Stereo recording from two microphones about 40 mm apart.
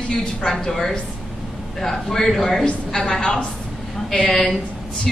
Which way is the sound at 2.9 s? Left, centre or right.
Centre.